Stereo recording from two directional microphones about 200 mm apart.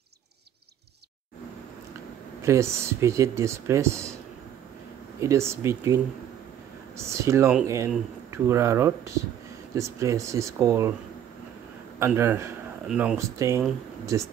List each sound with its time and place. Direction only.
2.4 s speech: 15° right (ahead or behind)
5.2 s speech: 15° right (ahead or behind)
7.0 s speech: 15° right (ahead or behind)
12.0 s speech: 10° right (ahead or behind)